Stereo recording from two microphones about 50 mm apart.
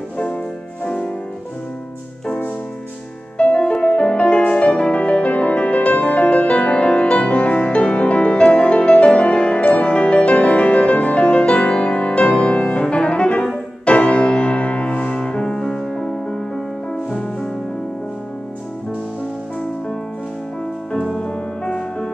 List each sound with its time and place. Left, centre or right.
0.8 s music: left
2.2 s music: left; by 17.5 s centre
21.1 s music: centre